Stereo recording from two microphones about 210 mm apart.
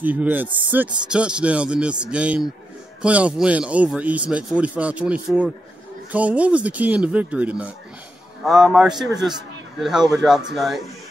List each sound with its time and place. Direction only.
0.0 s a man's voice: 10° right (ahead or behind)